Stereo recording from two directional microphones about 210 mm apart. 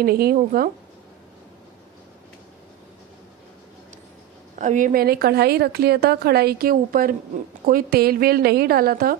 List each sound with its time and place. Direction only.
0.0 s a woman's voice: 45° right (ahead or behind)
4.6 s a woman's voice: 40° right (ahead or behind)